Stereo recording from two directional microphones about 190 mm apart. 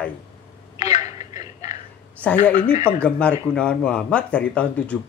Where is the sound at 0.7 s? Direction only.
35° left (ahead or behind).